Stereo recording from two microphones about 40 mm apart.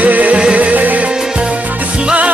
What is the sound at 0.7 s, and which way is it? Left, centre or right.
Music, right.